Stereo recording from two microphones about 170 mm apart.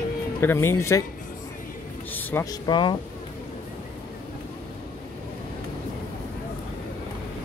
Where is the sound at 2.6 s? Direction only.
25° left (ahead or behind).